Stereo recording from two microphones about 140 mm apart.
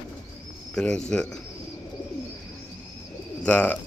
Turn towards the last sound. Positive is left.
turn(degrees=10)  # may be behind; listen again after turning